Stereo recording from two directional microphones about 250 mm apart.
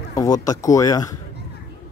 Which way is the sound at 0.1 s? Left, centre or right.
Centre.